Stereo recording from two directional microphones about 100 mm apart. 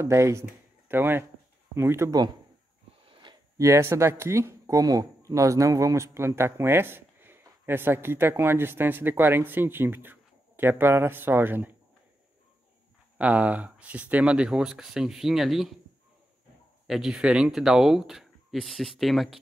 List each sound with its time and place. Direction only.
0.0 s speech: 30° right (ahead or behind)
2.0 s speech: 45° right (ahead or behind)
3.1 s a sound: 50° right (ahead or behind)
3.5 s speech: 30° right (ahead or behind)
13.2 s speech: 15° right (ahead or behind)
16.8 s speech: 5° right (ahead or behind)